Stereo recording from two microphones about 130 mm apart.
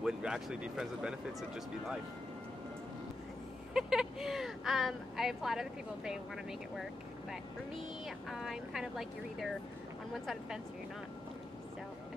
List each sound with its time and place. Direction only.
0.0 s speech: 5° right (ahead or behind)
3.7 s speech: 5° right (ahead or behind)